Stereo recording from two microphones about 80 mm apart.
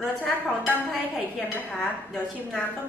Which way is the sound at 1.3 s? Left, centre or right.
Centre.